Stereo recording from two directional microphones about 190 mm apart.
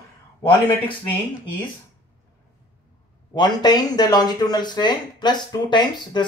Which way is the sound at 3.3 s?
20° left (ahead or behind).